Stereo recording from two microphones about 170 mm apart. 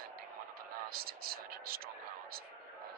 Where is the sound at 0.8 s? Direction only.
60° right (ahead or behind).